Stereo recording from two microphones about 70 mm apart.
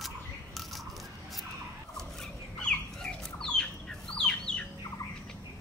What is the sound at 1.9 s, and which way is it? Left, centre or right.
Fowl, centre.